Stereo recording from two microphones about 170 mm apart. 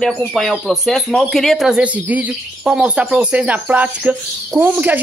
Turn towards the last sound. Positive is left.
turn(degrees=-10)  # may be behind; listen again after turning